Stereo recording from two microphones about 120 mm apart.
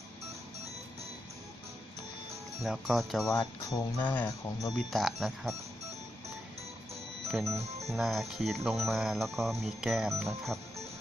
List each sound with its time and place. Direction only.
2.6 s speech: centre (ahead or behind)
3.3 s speech: 35° left (ahead or behind)
4.0 s speech: 15° left (ahead or behind)
4.9 s speech: centre (ahead or behind)
7.2 s music: centre (ahead or behind)
7.9 s speech: centre (ahead or behind)